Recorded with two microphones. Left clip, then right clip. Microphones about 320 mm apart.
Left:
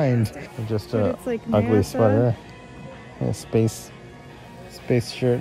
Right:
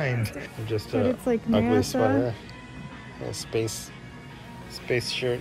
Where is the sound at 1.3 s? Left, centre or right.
Centre.